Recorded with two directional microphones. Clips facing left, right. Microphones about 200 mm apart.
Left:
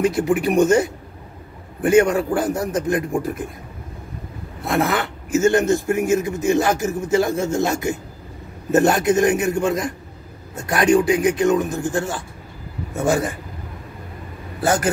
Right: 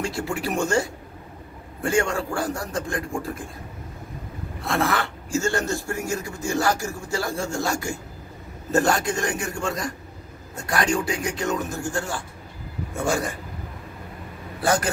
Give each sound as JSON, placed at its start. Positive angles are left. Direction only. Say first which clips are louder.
{"t": 0.0, "sound": "speech", "louder": "left 9 dB", "side_deg": 20}
{"t": 4.6, "sound": "speech", "louder": "left 4 dB", "side_deg": 20}